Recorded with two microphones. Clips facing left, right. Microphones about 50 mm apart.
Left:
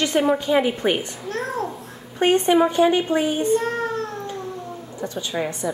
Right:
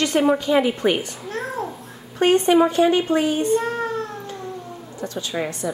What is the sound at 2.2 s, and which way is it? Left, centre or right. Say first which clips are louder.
A woman's voice: right 1 dB; centre.